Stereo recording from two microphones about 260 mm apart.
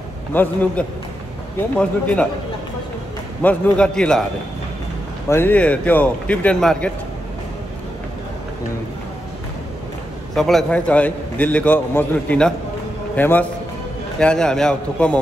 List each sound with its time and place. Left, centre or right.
0.3 s a man's voice: centre
3.4 s a man's voice: centre
5.3 s a man's voice: centre
10.3 s a man's voice: centre